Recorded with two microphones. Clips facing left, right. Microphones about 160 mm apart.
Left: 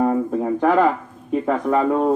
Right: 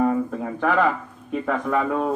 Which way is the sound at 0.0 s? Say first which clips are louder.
Left 3 dB; 30° left (ahead or behind).